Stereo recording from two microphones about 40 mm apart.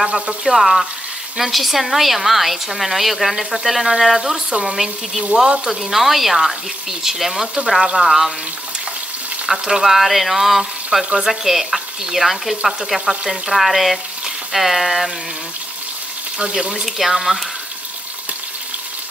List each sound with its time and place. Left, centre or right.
0.0 s a woman's voice: centre
5.3 s speech: right
5.7 s a woman's voice: centre
9.5 s a woman's voice: centre
16.3 s speech: right
16.8 s a woman's voice: centre